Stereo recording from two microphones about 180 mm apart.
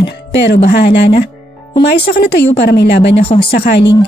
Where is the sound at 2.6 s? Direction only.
70° left (ahead or behind).